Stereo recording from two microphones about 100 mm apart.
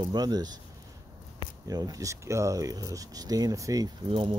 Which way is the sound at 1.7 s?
40° right (ahead or behind).